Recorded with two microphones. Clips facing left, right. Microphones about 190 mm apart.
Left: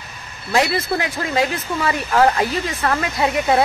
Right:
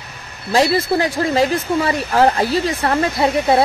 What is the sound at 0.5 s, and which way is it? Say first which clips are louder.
Speech: right 4 dB; 35° right (ahead or behind).